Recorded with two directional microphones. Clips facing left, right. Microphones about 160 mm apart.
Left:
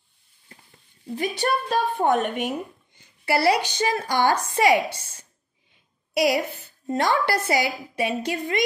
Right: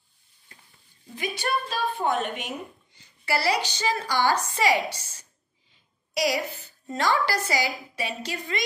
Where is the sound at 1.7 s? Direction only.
55° left (ahead or behind).